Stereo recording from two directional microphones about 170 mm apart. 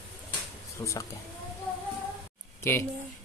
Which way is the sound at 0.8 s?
15° left (ahead or behind).